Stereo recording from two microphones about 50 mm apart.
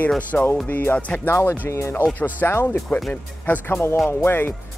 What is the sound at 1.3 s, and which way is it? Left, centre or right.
Speech, left.